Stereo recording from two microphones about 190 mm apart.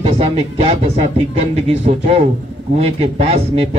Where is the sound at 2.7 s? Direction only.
35° right (ahead or behind).